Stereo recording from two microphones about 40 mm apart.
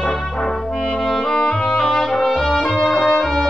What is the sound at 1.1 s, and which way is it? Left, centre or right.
Music, centre.